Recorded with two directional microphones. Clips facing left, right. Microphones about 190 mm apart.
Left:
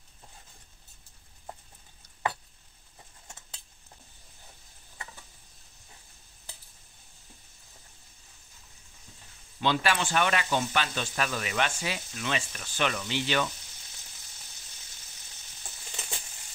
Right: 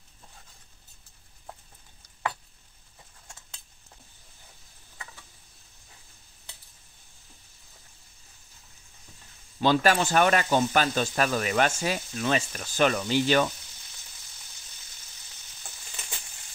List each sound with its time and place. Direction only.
9.6 s speech: 45° right (ahead or behind)